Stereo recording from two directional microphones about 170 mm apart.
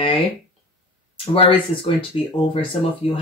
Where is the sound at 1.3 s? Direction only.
30° left (ahead or behind).